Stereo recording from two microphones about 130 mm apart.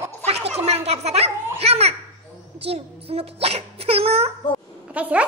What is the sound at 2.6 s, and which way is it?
Sneeze, 50° right (ahead or behind).